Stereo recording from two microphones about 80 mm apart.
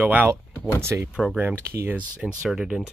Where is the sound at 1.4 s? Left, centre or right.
Right.